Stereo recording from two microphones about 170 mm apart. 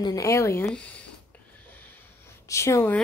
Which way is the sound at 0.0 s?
20° left (ahead or behind).